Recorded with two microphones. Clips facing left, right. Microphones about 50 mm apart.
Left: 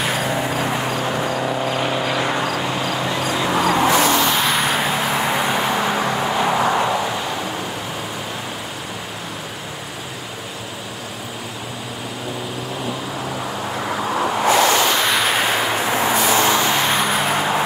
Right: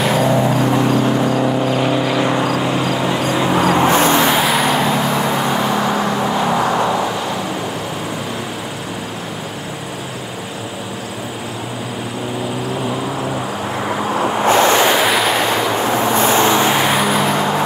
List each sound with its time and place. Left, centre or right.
0.0 s vehicle: centre
3.8 s vehicle: right
4.4 s vehicle: centre
14.4 s waves: right
15.0 s waves: centre
15.7 s vehicle: centre
16.2 s vehicle: right
16.8 s vehicle: centre